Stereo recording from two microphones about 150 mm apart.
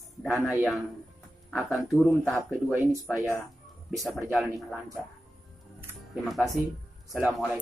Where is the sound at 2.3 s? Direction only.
20° right (ahead or behind).